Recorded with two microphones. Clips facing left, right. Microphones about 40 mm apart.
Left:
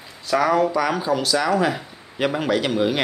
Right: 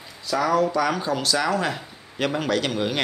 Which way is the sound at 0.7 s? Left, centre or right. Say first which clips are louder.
Left 2 dB; centre.